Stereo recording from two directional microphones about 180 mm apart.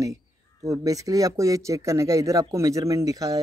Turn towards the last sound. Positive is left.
turn(degrees=-20)  # may be behind; listen again after turning